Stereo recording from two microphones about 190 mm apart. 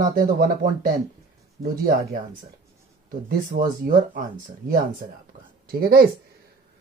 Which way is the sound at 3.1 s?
50° right (ahead or behind).